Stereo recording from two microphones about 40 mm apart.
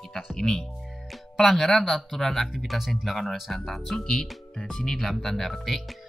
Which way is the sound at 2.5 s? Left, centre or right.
Centre.